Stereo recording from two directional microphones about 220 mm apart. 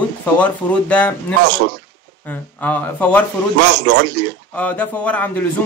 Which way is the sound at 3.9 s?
50° right (ahead or behind).